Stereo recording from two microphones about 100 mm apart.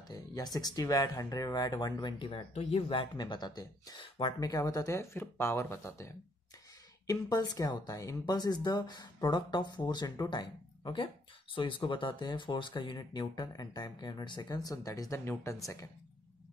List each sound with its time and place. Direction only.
0.1 s speech: 40° left (ahead or behind)
11.5 s speech: 60° left (ahead or behind); by 15.1 s 35° left (ahead or behind)
15.1 s speech: 20° left (ahead or behind)
15.6 s speech: 35° left (ahead or behind)